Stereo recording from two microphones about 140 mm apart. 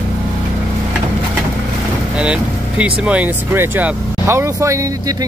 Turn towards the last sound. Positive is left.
turn(degrees=-20)  # may be behind; listen again after turning